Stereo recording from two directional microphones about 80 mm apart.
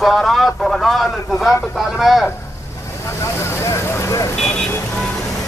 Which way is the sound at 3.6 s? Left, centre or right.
Left.